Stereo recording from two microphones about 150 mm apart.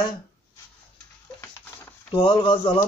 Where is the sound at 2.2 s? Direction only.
35° left (ahead or behind).